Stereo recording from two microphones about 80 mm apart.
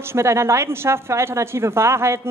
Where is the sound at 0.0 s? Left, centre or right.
Right.